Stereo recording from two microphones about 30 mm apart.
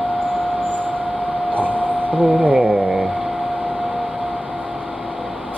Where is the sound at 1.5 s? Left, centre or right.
Right.